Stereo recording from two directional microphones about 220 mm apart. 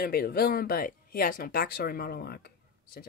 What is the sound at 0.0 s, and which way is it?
Speech, 45° left (ahead or behind).